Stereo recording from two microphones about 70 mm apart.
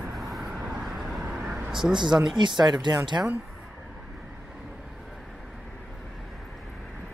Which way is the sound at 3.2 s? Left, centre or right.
Right.